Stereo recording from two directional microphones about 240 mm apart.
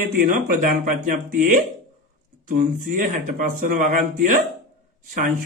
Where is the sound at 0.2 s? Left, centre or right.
Right.